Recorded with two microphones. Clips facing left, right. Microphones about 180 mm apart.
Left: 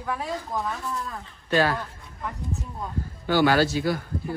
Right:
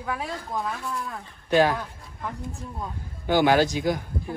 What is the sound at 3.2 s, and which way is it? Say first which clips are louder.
Speech: right 1 dB; 15° right (ahead or behind).